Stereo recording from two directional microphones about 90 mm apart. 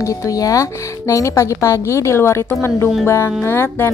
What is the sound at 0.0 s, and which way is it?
A woman's voice, 40° left (ahead or behind).